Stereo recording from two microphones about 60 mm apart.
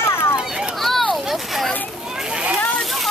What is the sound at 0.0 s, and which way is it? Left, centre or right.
Children playing, left.